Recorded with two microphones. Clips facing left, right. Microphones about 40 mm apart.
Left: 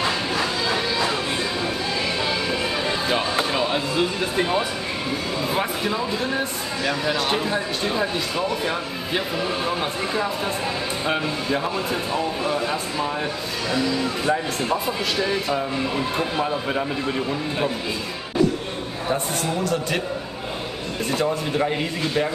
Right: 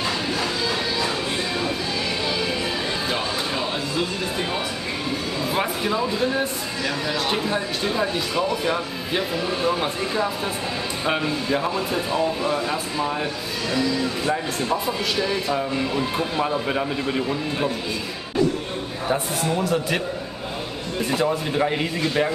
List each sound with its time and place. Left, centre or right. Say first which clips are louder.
0.7 s music: left 2 dB; left
3.5 s speech: left 3 dB; centre
5.6 s speech: right 1 dB; centre
6.8 s speech: left 2 dB; centre
14.2 s speech: left 1 dB; centre
14.9 s speech: even; centre
19.0 s a man's voice: right 1 dB; centre
21.1 s a man's voice: even; centre